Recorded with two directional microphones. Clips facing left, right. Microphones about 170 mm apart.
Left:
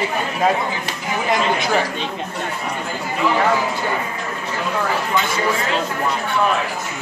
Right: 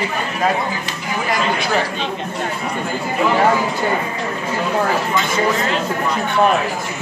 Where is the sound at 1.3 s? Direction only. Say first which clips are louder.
Left 1 dB; 20° left (ahead or behind).